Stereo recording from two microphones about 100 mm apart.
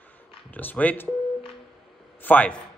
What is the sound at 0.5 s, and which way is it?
Speech, 15° left (ahead or behind).